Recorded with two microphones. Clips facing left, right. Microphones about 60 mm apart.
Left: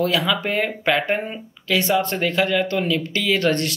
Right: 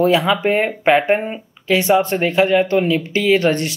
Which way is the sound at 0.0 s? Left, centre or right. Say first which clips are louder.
Right 6 dB; right.